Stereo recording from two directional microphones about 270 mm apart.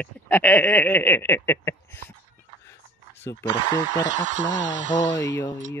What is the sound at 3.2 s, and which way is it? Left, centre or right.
Speech, centre.